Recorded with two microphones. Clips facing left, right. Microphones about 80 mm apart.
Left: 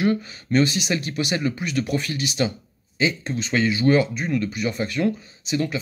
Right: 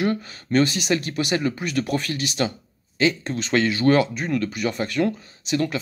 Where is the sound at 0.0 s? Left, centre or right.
Right.